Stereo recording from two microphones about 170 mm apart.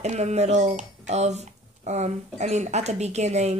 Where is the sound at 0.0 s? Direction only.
40° right (ahead or behind).